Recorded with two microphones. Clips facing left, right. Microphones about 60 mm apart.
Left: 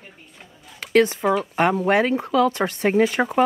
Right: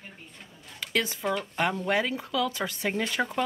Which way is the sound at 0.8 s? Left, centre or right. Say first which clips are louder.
Left 11 dB; left.